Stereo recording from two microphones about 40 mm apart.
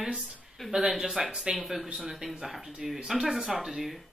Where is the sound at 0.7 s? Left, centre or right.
Centre.